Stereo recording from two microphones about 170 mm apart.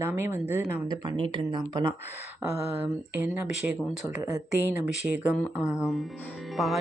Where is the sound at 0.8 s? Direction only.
30° right (ahead or behind).